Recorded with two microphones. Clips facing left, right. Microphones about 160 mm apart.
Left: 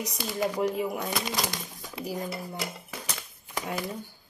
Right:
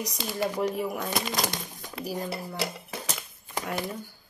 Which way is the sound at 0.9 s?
15° left (ahead or behind).